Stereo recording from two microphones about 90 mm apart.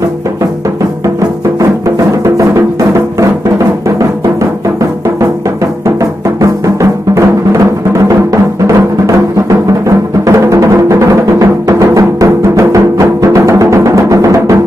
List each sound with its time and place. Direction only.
2.2 s music: 35° right (ahead or behind)
5.9 s music: 35° right (ahead or behind)